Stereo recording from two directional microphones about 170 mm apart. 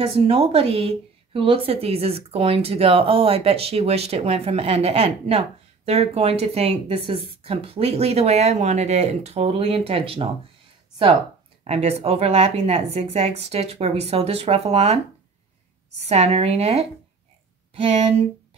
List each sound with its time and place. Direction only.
0.0 s a woman's voice: 35° right (ahead or behind)
11.6 s a woman's voice: 35° right (ahead or behind)
16.0 s a woman's voice: 40° right (ahead or behind)